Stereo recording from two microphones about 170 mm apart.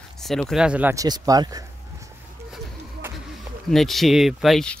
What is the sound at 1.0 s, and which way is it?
Speech, 20° right (ahead or behind).